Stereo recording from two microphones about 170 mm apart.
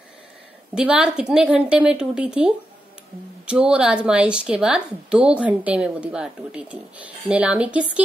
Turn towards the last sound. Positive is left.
turn(degrees=-5)  # may be behind; listen again after turning